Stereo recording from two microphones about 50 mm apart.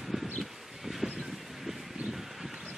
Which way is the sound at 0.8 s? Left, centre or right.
Centre.